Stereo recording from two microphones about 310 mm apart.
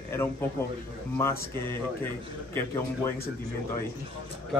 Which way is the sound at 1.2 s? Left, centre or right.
Centre.